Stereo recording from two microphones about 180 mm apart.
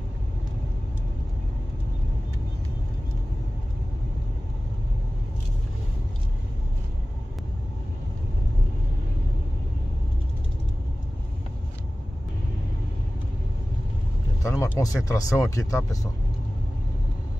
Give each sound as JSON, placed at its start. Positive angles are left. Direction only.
{"t": 14.4, "sound": "vehicle", "side_deg": 15}
{"t": 14.8, "sound": "speech", "side_deg": 20}